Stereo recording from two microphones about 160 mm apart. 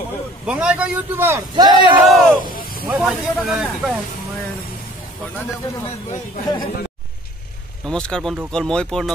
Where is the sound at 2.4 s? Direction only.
65° left (ahead or behind).